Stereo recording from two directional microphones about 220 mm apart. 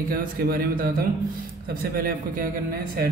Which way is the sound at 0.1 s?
40° right (ahead or behind).